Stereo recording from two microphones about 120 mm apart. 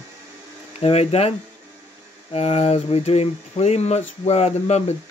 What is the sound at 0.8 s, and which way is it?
Speech, 60° left (ahead or behind).